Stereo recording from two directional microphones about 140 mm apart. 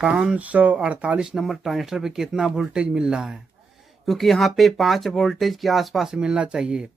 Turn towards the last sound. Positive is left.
turn(degrees=-5)  # may be behind; listen again after turning